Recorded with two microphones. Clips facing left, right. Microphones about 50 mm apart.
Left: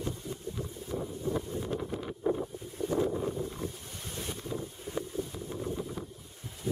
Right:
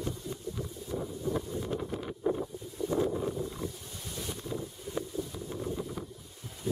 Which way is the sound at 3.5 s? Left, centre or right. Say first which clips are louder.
Even; left.